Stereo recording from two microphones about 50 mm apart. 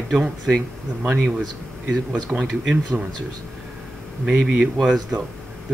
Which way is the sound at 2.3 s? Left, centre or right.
Centre.